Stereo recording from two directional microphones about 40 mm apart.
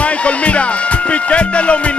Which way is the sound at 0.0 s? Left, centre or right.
Left.